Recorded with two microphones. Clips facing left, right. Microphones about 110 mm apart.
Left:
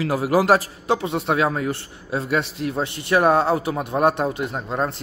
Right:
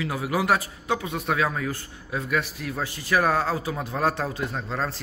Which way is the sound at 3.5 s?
60° left (ahead or behind).